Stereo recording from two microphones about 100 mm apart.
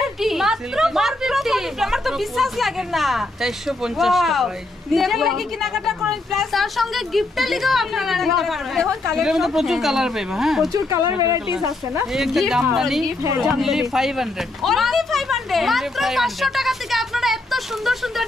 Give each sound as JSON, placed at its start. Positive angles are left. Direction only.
{"t": 0.0, "sound": "a woman's voice", "side_deg": -5}
{"t": 10.7, "sound": "speech", "side_deg": -30}
{"t": 12.1, "sound": "speech", "side_deg": 0}